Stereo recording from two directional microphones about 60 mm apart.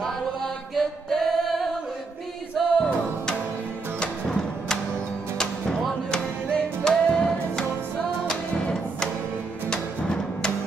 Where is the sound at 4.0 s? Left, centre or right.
Centre.